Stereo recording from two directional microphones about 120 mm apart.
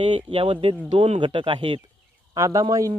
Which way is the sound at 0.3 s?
50° right (ahead or behind).